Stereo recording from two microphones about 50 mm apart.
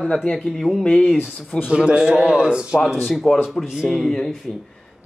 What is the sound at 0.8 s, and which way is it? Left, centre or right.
Speech, centre.